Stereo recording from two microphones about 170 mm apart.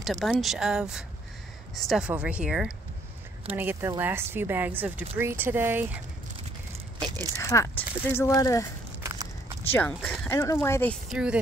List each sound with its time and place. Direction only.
0.0 s speech: centre (ahead or behind)
7.1 s speech: 20° right (ahead or behind)
7.3 s speech: 20° left (ahead or behind)
9.0 s walk: 20° right (ahead or behind)
9.7 s speech: 10° left (ahead or behind)
11.1 s speech: 5° right (ahead or behind)